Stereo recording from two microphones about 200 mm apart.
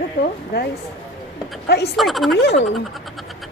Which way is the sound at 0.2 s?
50° left (ahead or behind).